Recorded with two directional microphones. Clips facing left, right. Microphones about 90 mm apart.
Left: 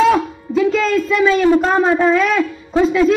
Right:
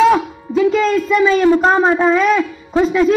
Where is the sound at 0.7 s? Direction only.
5° right (ahead or behind).